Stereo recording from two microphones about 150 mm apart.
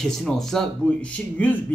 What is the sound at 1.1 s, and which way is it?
Speech, 10° left (ahead or behind).